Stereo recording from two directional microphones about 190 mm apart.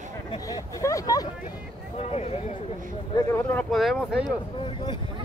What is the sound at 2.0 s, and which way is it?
Speech, 30° left (ahead or behind).